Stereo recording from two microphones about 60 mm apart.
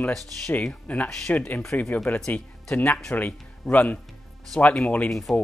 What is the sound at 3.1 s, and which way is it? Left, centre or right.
A man's voice, left.